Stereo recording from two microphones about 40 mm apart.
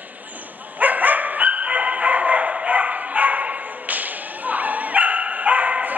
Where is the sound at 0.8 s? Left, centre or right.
Right.